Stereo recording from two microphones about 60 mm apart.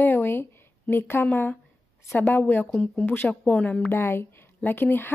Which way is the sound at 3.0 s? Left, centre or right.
Left.